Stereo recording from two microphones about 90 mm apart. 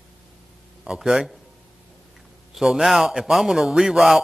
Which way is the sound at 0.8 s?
5° right (ahead or behind).